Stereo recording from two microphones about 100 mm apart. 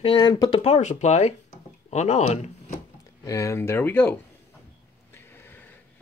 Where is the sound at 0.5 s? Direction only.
90° left.